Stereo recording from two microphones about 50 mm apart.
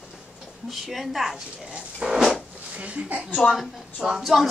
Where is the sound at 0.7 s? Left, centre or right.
Centre.